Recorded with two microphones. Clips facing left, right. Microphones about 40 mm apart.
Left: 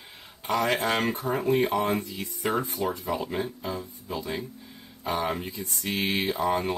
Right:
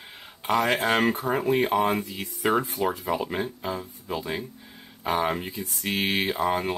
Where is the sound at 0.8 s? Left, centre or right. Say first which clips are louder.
Right 3 dB; centre.